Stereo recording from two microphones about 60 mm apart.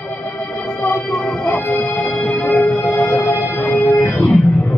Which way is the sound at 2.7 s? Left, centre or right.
Left.